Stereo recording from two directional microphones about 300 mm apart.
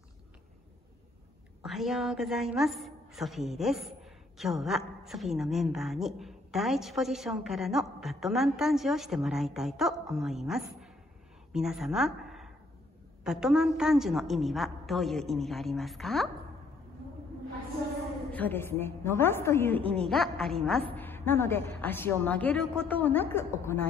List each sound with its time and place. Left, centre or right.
1.6 s a woman's voice: centre
18.3 s a woman's voice: centre